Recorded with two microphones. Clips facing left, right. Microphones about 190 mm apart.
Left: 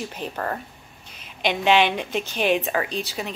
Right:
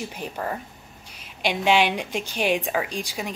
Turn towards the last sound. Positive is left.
turn(degrees=-10)  # may be behind; listen again after turning